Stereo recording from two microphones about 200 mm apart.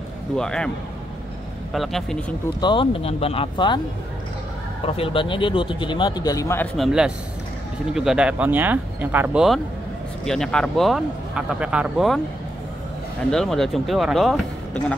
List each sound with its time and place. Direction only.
0.4 s speech: 5° left (ahead or behind)
1.7 s speech: centre (ahead or behind)
2.6 s speech: 25° left (ahead or behind)
4.8 s speech: 30° left (ahead or behind)
6.8 s speech: 5° right (ahead or behind)
13.3 s speech: centre (ahead or behind)